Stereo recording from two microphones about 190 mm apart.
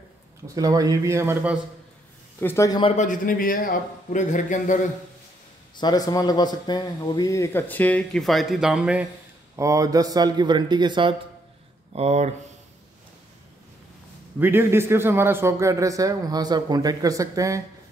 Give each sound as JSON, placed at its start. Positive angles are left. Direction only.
{"t": 0.6, "sound": "a man's voice", "side_deg": -20}
{"t": 2.4, "sound": "a man's voice", "side_deg": 15}
{"t": 3.0, "sound": "a man's voice", "side_deg": 45}
{"t": 5.8, "sound": "a man's voice", "side_deg": 20}
{"t": 9.6, "sound": "a man's voice", "side_deg": -15}
{"t": 14.4, "sound": "a man's voice", "side_deg": -10}